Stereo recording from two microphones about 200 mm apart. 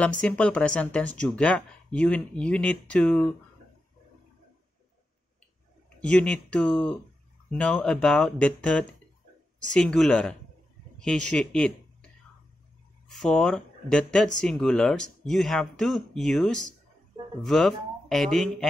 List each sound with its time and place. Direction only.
0.0 s speech: 5° left (ahead or behind)
5.9 s speech: 5° left (ahead or behind)
13.1 s speech: 5° left (ahead or behind)